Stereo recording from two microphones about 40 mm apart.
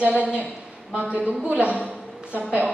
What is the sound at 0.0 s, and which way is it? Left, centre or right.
A woman's voice, right.